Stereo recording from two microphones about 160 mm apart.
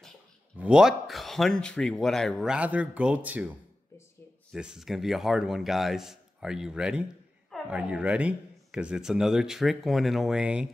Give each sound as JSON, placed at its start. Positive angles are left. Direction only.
{"t": 0.6, "sound": "speech", "side_deg": -5}